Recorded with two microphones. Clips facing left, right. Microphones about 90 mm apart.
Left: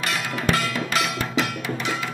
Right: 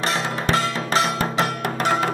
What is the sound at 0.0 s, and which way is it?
Music, 30° right (ahead or behind).